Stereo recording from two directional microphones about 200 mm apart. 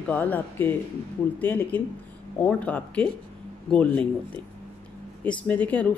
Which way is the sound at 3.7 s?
5° left (ahead or behind).